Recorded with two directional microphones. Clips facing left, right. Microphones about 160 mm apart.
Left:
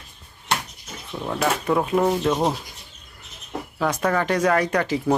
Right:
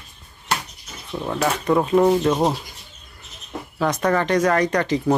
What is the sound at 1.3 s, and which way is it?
Speech, 5° left (ahead or behind).